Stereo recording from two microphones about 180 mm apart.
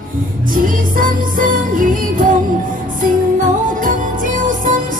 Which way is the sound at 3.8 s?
50° right (ahead or behind).